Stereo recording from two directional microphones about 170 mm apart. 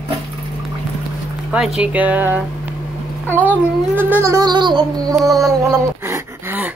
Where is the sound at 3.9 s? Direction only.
15° right (ahead or behind).